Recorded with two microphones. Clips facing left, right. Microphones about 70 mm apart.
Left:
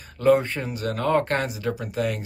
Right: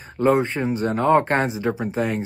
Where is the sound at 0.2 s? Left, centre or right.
Right.